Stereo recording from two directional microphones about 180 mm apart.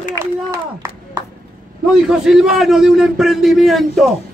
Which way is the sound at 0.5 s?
15° right (ahead or behind).